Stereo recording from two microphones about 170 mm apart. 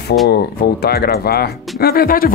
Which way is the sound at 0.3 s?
70° left (ahead or behind).